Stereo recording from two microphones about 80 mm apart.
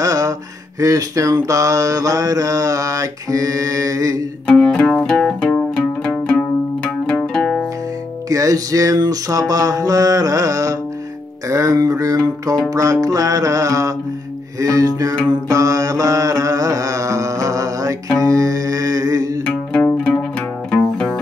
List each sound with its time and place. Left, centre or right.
0.0 s a sound: right
4.5 s music: centre
8.3 s music: right
9.0 s a sound: right
14.6 s mantra: right
18.2 s music: right
19.4 s music: centre